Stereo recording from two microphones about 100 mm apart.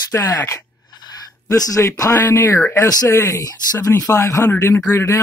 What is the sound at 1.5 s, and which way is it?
Speech, 35° left (ahead or behind).